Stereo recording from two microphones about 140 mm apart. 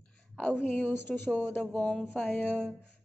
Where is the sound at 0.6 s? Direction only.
15° left (ahead or behind).